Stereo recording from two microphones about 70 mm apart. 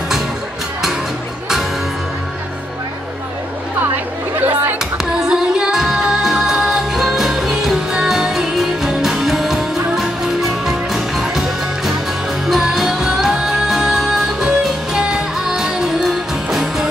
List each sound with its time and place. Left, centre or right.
3.9 s chatter: right
4.9 s music: centre